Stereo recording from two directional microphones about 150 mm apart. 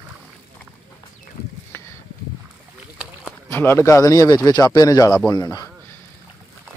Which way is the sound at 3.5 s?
15° left (ahead or behind).